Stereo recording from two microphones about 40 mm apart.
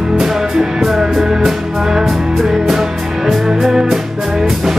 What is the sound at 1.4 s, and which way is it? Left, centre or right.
Music, centre.